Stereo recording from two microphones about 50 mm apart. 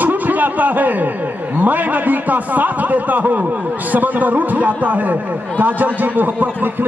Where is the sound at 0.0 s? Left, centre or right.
Right.